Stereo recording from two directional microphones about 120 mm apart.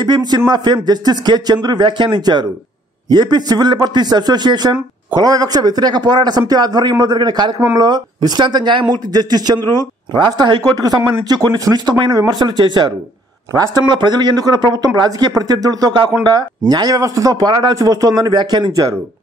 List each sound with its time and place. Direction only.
0.0 s speech: 35° right (ahead or behind)